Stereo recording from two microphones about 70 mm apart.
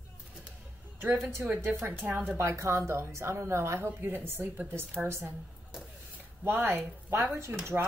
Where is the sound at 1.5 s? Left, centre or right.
Right.